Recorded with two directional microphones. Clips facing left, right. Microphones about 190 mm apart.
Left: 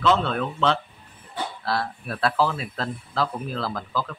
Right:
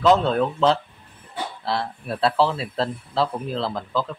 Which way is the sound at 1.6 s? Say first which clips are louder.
Right 1 dB; 25° right (ahead or behind).